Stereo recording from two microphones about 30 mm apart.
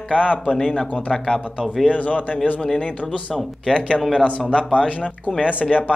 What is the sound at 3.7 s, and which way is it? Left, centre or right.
Speech, left.